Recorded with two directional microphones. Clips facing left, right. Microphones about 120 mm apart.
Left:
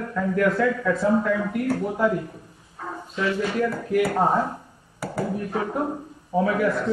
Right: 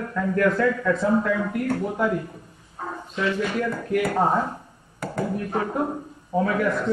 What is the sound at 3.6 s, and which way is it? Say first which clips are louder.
A man's voice: left 2 dB; 5° left (ahead or behind).